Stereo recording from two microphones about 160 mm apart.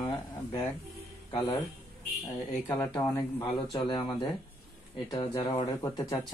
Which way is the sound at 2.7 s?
25° left (ahead or behind).